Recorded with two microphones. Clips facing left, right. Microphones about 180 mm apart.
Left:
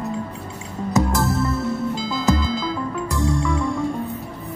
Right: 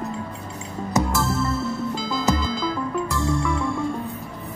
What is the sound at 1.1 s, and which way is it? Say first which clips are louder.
Music: left 2 dB; 15° left (ahead or behind).